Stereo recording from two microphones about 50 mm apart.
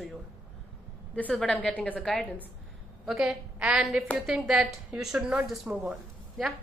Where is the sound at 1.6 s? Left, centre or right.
Left.